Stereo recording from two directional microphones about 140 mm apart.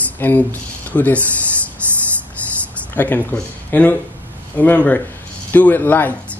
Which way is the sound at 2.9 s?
10° left (ahead or behind).